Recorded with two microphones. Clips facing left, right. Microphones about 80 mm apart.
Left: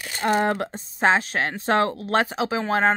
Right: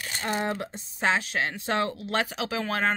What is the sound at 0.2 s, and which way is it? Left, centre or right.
Speech, left.